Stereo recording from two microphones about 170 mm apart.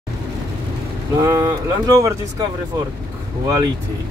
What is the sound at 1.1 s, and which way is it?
Speech, 20° right (ahead or behind).